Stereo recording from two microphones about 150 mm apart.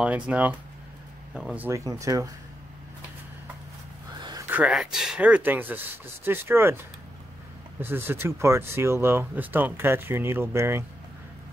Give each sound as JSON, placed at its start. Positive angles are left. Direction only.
{"t": 0.0, "sound": "speech", "side_deg": -10}
{"t": 1.7, "sound": "speech", "side_deg": -20}
{"t": 4.2, "sound": "a sound", "side_deg": -25}
{"t": 4.5, "sound": "speech", "side_deg": -5}
{"t": 7.8, "sound": "speech", "side_deg": -15}